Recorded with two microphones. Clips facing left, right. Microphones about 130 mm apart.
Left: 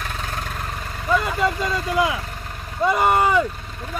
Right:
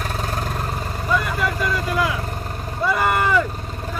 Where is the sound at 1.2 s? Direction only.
25° left (ahead or behind).